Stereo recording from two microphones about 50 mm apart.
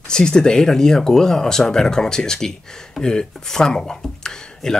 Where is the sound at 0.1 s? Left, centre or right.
Centre.